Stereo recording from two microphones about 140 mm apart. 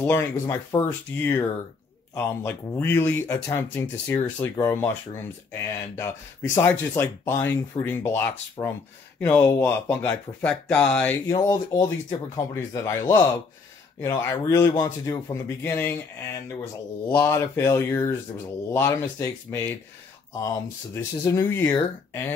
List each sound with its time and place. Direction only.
0.0 s speech: 15° left (ahead or behind)
11.2 s speech: 25° left (ahead or behind)